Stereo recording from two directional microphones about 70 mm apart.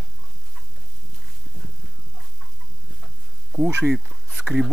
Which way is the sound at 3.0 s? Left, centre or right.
Centre.